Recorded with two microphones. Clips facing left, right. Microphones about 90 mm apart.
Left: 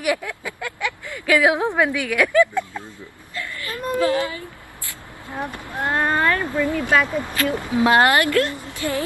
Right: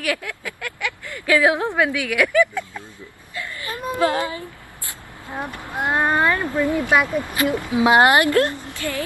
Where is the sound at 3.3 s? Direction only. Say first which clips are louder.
Even; 25° right (ahead or behind).